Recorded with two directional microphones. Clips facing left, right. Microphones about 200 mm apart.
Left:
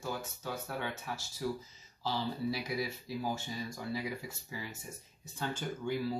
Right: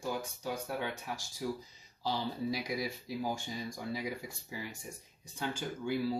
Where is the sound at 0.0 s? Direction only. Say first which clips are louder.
Right 2 dB; 15° right (ahead or behind).